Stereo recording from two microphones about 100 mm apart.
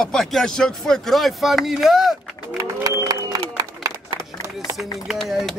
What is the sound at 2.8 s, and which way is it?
Music, 35° right (ahead or behind).